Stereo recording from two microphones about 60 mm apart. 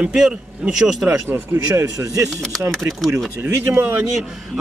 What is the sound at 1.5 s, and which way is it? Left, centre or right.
Speech, right.